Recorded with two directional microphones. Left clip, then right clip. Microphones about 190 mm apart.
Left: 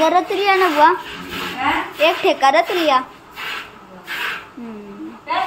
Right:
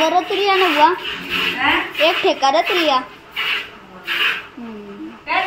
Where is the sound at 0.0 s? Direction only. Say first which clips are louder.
Left 1 dB; 5° left (ahead or behind).